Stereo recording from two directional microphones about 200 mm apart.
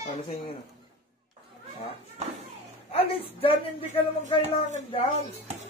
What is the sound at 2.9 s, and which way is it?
Speech, 25° left (ahead or behind).